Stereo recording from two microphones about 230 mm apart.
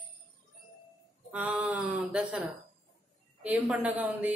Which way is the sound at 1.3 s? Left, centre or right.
Centre.